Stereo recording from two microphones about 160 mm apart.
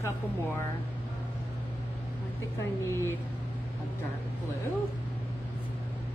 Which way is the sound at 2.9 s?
15° left (ahead or behind).